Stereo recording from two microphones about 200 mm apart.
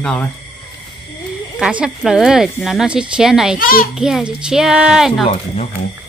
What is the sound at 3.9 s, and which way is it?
Speech, 5° right (ahead or behind).